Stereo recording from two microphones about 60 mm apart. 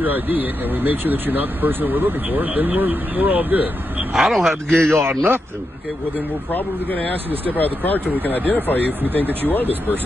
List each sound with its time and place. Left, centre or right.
0.0 s speech: right
4.1 s speech: centre
6.5 s speech: left
9.2 s speech: right
9.5 s speech: left